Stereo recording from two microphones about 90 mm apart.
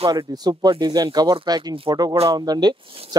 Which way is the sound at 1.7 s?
80° right.